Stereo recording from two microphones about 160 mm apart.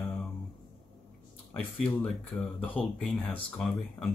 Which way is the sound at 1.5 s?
5° left (ahead or behind).